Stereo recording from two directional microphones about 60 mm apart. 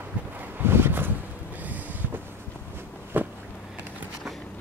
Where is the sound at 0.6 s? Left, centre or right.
Right.